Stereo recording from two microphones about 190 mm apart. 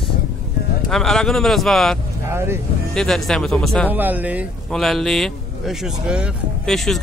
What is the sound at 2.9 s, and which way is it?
Speech, centre (ahead or behind).